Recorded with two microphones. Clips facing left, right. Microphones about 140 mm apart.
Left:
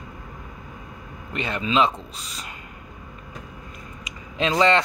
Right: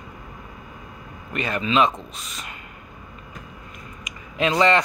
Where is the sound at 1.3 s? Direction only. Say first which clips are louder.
Right 1 dB; 25° left (ahead or behind).